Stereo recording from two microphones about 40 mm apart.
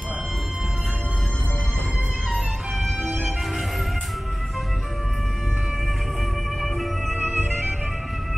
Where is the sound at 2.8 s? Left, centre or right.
Centre.